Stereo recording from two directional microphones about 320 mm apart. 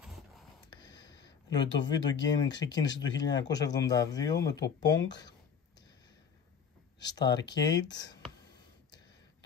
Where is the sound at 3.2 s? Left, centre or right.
Centre.